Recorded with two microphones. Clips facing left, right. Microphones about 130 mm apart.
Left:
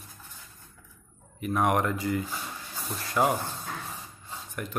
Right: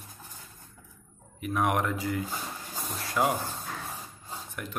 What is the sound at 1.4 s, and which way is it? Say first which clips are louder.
Speech: left 2 dB; centre (ahead or behind).